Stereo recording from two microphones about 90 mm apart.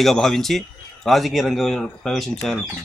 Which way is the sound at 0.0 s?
5° left (ahead or behind).